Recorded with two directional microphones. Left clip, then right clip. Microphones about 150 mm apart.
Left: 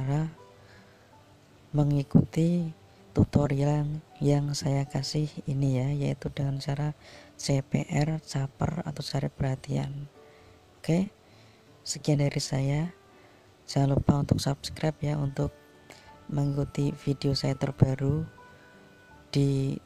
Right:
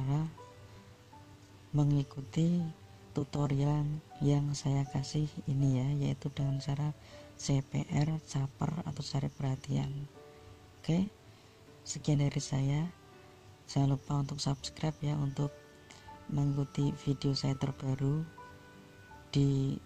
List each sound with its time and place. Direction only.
0.0 s music: 20° left (ahead or behind)
1.8 s speech: 25° left (ahead or behind)
16.5 s speech: 25° left (ahead or behind)
19.3 s speech: 25° left (ahead or behind)